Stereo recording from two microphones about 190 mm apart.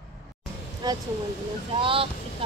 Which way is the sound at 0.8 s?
20° right (ahead or behind).